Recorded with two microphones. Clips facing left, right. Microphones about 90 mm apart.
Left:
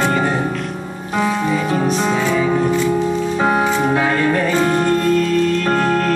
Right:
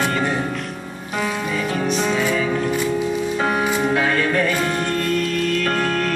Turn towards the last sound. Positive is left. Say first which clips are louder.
# left 4 dB
turn(degrees=20)  # may be behind; listen again after turning